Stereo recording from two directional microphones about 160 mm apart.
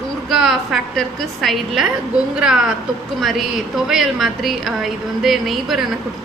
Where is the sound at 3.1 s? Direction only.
Centre (ahead or behind).